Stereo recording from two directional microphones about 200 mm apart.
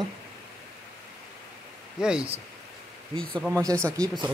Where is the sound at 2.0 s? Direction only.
5° right (ahead or behind).